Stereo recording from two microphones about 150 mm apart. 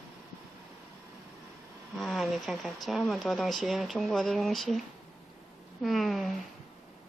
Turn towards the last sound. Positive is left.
turn(degrees=0)  # may be behind; listen again after turning